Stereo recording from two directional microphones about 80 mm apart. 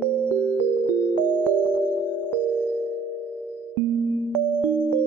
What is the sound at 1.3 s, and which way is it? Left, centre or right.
Music, centre.